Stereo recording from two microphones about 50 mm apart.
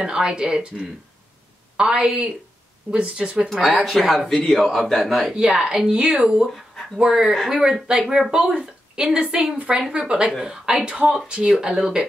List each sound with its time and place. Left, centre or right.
0.0 s a woman's voice: centre
3.8 s a man's voice: centre
5.3 s a woman's voice: centre